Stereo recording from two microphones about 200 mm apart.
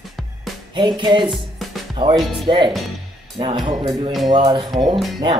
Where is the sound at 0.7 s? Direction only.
25° right (ahead or behind).